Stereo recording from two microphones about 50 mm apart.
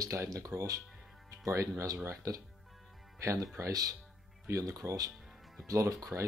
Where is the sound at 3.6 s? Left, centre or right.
Right.